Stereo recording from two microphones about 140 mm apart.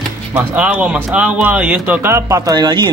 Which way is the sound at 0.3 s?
10° right (ahead or behind).